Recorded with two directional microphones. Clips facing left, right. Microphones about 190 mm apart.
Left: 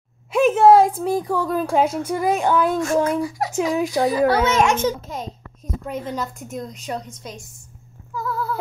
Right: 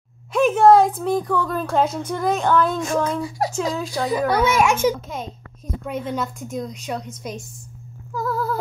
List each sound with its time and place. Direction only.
0.3 s a woman's voice: 5° left (ahead or behind)
3.3 s a child's voice: 30° right (ahead or behind)
3.5 s speech: 20° left (ahead or behind)
4.3 s a child's voice: 10° right (ahead or behind)
8.1 s a sound: 40° right (ahead or behind)